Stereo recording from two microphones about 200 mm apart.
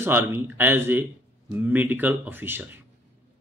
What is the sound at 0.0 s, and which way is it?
Speech, 10° right (ahead or behind).